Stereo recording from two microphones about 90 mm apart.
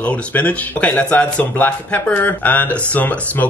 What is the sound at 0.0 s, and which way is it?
Speech, 15° left (ahead or behind).